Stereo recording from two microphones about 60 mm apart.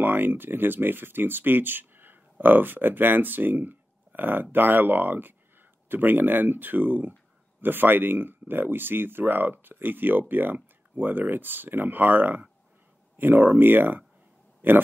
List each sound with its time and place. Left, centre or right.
0.0 s speech: right